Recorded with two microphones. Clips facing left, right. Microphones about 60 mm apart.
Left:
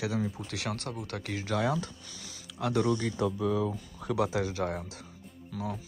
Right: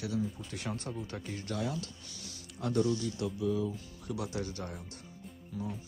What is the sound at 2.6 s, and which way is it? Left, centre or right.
Speech, left.